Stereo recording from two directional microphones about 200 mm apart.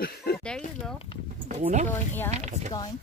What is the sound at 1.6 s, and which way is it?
Speech, 35° right (ahead or behind).